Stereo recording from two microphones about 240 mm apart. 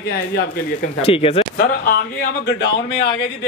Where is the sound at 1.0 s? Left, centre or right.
Left.